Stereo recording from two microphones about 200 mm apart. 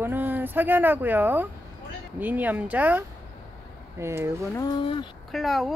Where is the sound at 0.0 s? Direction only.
10° right (ahead or behind).